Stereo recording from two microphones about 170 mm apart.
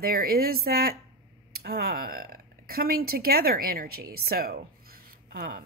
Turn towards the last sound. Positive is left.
turn(degrees=-60)  # may be behind; listen again after turning